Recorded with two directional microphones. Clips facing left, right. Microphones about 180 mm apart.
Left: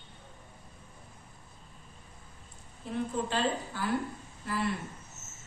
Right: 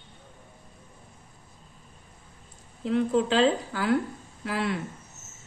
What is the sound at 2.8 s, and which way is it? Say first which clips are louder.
A woman's voice: right 9 dB; 90° right.